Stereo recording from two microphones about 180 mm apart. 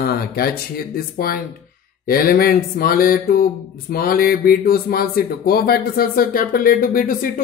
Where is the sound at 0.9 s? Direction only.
55° left (ahead or behind).